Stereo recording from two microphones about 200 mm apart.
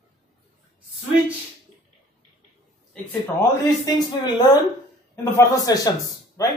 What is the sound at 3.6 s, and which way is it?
A man's voice, 20° left (ahead or behind).